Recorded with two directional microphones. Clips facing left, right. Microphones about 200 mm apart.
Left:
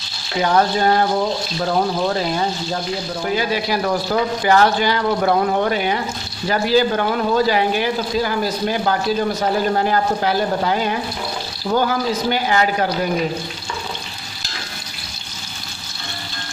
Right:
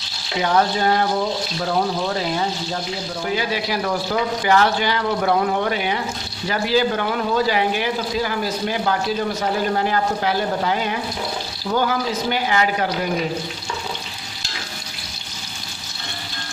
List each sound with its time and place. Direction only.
0.4 s speech: 40° left (ahead or behind)
3.3 s a man's voice: 40° left (ahead or behind)
9.8 s a man's voice: 40° left (ahead or behind)
12.3 s a man's voice: 40° left (ahead or behind)